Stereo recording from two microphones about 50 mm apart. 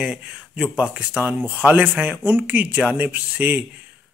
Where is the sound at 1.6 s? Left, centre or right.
Right.